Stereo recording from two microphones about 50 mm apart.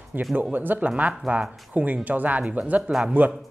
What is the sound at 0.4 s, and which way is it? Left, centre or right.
Speech, right.